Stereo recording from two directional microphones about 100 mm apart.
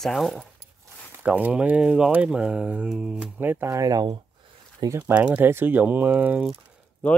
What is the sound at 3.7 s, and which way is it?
Speech, 40° right (ahead or behind).